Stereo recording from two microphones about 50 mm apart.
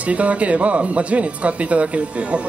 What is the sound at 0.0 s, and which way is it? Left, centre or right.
Speech, right.